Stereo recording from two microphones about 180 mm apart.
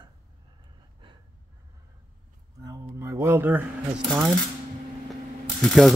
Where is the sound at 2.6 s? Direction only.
20° right (ahead or behind).